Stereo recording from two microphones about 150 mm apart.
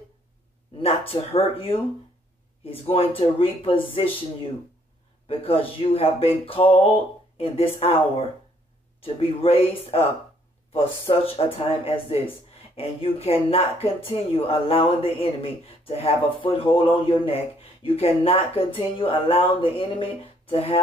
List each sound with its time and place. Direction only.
0.7 s speech: 40° left (ahead or behind)
9.0 s speech: 40° left (ahead or behind)